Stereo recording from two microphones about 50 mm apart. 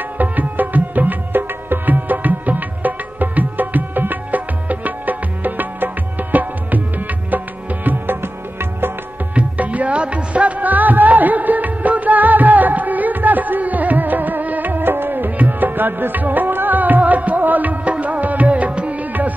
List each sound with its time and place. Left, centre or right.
0.2 s music: right
8.2 s music: right
9.3 s music: right